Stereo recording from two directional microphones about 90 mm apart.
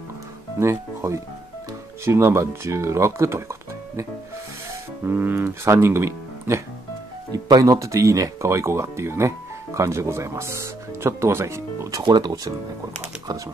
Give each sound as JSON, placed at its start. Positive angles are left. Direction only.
{"t": 0.6, "sound": "speech", "side_deg": -30}
{"t": 5.0, "sound": "speech", "side_deg": -25}
{"t": 7.2, "sound": "speech", "side_deg": -45}
{"t": 12.0, "sound": "speech", "side_deg": -50}